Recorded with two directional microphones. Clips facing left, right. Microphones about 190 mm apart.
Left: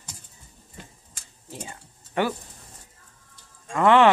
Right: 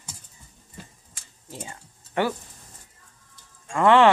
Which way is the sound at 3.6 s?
20° left (ahead or behind).